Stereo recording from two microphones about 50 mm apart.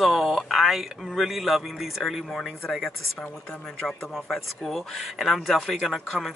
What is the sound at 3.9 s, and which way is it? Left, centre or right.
Speech, centre.